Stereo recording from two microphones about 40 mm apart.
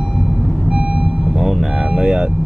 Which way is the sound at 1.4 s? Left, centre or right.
Centre.